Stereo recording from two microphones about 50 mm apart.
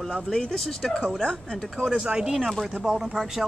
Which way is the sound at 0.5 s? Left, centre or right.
Centre.